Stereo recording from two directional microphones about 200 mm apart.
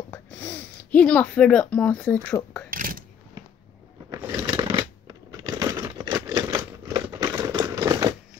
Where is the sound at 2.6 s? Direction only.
45° right (ahead or behind).